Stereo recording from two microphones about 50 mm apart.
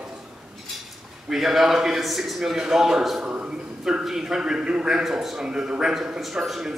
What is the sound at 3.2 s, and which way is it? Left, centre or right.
A man's voice, centre.